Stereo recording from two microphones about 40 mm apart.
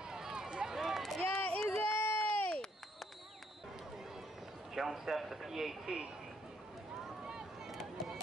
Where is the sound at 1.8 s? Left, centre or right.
Left.